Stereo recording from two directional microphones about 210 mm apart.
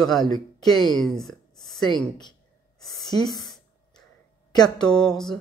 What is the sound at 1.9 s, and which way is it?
Speech, 20° left (ahead or behind).